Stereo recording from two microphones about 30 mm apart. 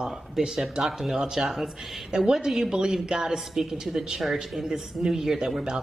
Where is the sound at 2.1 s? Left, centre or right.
Right.